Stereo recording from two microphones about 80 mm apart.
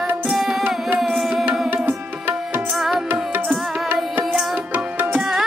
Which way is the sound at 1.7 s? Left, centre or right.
Right.